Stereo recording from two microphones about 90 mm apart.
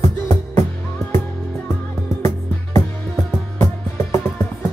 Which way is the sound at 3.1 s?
5° left (ahead or behind).